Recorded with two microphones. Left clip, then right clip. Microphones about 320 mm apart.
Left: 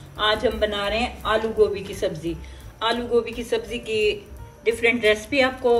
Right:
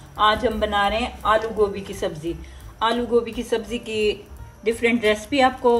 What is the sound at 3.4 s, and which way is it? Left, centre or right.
A woman's voice, right.